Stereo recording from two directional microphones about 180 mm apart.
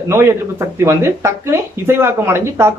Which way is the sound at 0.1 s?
15° right (ahead or behind).